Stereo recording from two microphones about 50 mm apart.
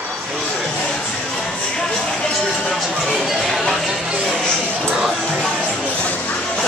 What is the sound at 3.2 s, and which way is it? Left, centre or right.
Speech, centre.